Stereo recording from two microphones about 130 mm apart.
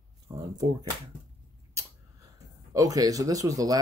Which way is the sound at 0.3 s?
30° right (ahead or behind).